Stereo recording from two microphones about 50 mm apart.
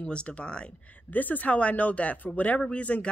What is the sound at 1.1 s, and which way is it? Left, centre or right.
Speech, left.